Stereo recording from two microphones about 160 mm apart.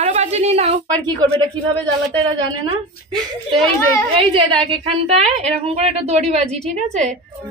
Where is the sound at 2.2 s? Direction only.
30° right (ahead or behind).